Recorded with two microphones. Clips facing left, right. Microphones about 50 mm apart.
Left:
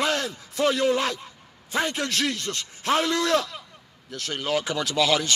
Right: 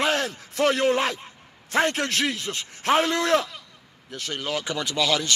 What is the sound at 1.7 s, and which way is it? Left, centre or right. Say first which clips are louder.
Speech: right 3 dB; right.